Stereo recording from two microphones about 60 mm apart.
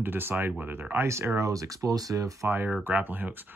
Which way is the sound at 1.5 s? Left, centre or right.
Right.